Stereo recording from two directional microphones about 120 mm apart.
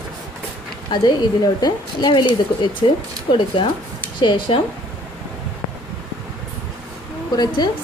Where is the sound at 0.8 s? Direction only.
40° left (ahead or behind).